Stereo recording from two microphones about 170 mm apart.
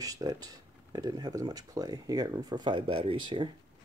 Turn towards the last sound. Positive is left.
turn(degrees=-30)  # may be behind; listen again after turning